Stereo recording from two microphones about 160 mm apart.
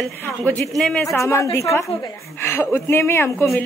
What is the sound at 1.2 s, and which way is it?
A woman's voice, 20° left (ahead or behind).